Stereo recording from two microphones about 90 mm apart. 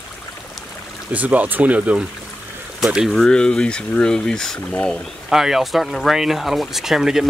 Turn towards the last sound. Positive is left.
turn(degrees=-5)  # may be behind; listen again after turning